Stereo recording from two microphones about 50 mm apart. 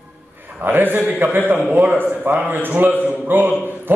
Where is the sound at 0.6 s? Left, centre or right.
Right.